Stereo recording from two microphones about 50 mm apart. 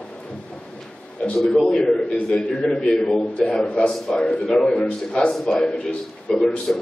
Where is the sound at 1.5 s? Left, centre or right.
Centre.